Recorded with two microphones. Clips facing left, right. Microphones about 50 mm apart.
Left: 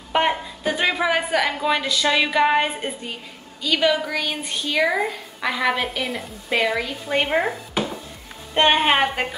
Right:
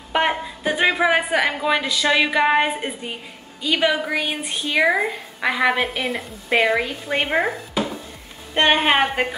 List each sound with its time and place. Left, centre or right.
0.1 s a woman's voice: centre
5.9 s a woman's voice: centre
6.5 s a woman's voice: centre
8.5 s a woman's voice: centre